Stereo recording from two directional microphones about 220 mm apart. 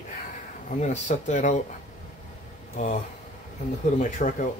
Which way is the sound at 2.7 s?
35° left (ahead or behind).